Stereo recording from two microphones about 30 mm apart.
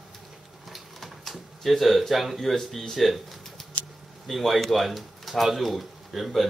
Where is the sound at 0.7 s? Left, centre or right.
Centre.